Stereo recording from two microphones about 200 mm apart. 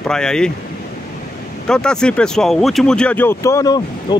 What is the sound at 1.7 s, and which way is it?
Speech, 5° left (ahead or behind).